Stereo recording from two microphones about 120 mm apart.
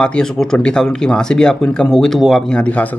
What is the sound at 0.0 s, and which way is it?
Speech, 5° left (ahead or behind).